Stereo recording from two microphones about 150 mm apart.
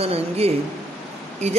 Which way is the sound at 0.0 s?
40° right (ahead or behind).